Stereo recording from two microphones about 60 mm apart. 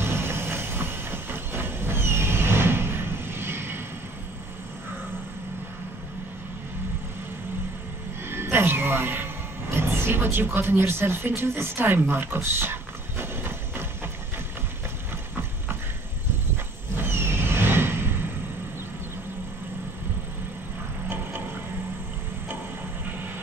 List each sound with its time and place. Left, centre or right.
0.0 s train: right
8.3 s music: right
13.2 s clip-clop: right
16.9 s vehicle: right